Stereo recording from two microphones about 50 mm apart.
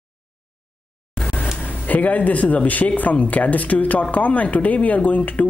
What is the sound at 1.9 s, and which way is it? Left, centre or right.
Speech, left.